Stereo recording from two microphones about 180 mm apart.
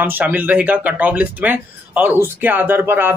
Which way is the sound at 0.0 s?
10° right (ahead or behind).